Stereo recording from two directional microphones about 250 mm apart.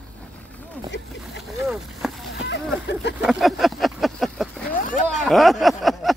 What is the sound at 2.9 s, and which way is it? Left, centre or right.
Speech, left.